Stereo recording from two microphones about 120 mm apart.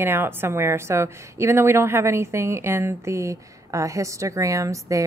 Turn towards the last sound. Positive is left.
turn(degrees=-25)  # may be behind; listen again after turning